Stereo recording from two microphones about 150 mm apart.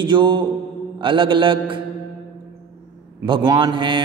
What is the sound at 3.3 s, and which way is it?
Speech, 30° right (ahead or behind).